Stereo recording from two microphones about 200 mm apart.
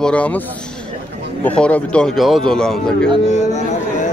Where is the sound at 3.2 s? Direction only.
35° left (ahead or behind).